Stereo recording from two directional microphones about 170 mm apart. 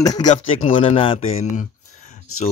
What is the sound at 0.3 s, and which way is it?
Speech, 35° left (ahead or behind).